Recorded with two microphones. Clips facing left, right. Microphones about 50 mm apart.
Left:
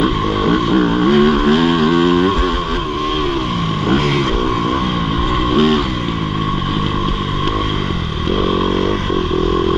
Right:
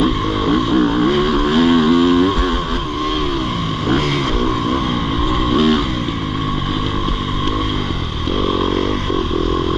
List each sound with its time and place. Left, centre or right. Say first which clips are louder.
0.0 s vehicle: left 1 dB; centre
5.5 s vehicle: left 1 dB; left